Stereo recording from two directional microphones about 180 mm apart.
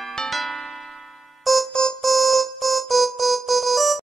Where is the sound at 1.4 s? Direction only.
Centre (ahead or behind).